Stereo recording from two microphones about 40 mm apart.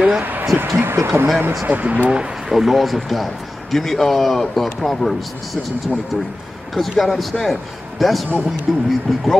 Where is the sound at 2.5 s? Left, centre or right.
Centre.